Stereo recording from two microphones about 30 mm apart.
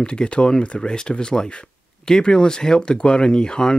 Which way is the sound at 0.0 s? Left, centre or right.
Left.